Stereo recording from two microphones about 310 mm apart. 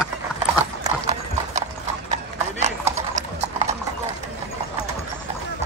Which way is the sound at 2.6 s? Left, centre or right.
Right.